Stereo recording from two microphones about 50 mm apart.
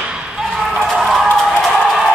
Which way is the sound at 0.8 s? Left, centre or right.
Centre.